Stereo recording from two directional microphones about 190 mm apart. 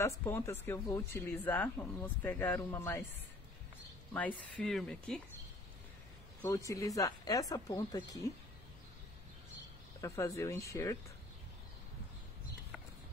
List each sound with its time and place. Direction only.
0.0 s speech: 15° left (ahead or behind)
4.1 s speech: 10° left (ahead or behind)
6.4 s speech: 15° left (ahead or behind)
9.9 s speech: 15° left (ahead or behind)